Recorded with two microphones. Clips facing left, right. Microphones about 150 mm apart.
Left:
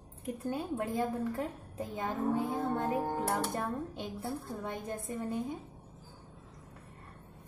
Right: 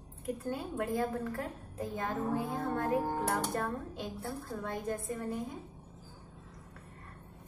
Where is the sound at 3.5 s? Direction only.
20° left (ahead or behind).